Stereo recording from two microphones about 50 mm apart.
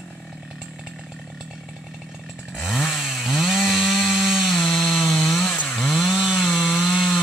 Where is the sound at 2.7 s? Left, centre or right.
Centre.